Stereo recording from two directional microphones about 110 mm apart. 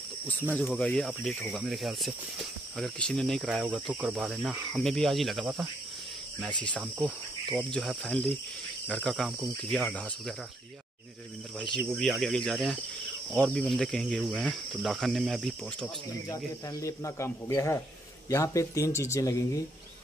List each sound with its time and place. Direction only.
0.6 s speech: 15° left (ahead or behind)
1.0 s speech: centre (ahead or behind)
3.6 s speech: 10° right (ahead or behind)
7.0 s cricket: 10° left (ahead or behind)
8.1 s speech: 10° left (ahead or behind)
12.0 s speech: 5° left (ahead or behind)
16.3 s speech: 30° left (ahead or behind)